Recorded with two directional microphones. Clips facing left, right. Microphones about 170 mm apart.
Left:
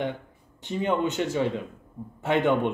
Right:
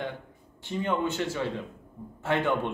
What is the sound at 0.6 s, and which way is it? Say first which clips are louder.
Speech: left 3 dB; 20° left (ahead or behind).